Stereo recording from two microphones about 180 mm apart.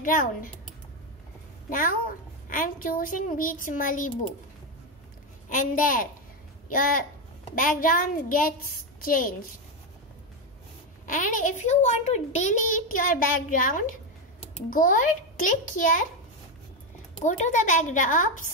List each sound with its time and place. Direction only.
0.0 s a child's voice: 50° left (ahead or behind)
1.7 s a child's voice: 50° left (ahead or behind)
5.5 s a child's voice: 50° left (ahead or behind)
11.1 s a child's voice: 45° left (ahead or behind)
17.2 s a child's voice: 40° left (ahead or behind)